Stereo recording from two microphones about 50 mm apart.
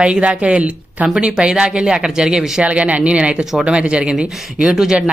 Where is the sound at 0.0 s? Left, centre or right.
Centre.